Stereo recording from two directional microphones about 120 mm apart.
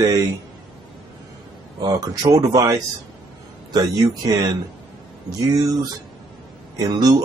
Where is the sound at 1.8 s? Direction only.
30° right (ahead or behind).